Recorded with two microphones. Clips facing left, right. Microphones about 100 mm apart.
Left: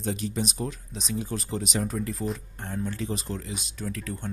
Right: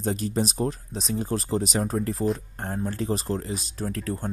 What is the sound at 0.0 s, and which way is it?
Speech, 40° right (ahead or behind).